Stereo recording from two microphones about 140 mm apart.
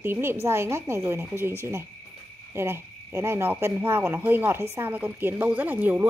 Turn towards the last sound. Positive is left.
turn(degrees=-10)  # may be behind; listen again after turning